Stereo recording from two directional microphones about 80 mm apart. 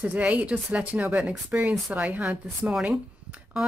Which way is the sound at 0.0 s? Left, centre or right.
Centre.